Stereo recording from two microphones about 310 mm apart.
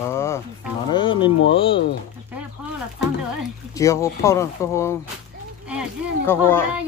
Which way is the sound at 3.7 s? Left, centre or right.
Centre.